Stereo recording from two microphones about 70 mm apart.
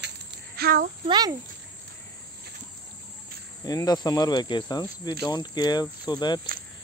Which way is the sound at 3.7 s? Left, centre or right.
Left.